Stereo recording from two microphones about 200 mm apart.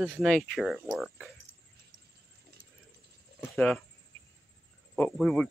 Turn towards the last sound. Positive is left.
turn(degrees=5)  # may be behind; listen again after turning